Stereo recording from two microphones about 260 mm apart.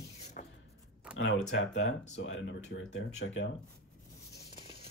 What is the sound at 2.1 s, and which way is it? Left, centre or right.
Speech, left.